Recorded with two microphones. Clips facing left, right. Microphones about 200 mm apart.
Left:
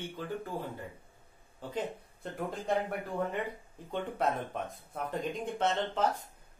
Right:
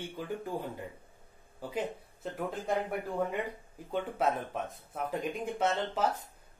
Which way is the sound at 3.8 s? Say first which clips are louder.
Right 1 dB; 5° right (ahead or behind).